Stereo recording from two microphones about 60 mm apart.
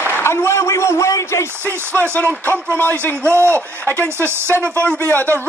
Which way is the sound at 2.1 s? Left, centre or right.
Left.